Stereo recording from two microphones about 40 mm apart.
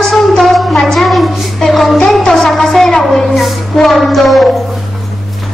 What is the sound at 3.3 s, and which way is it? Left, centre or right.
Music, centre.